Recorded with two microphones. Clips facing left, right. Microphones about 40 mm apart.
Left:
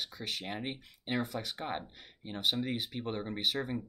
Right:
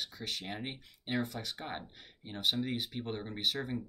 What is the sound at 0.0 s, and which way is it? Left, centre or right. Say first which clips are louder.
Speech: left 1 dB; centre.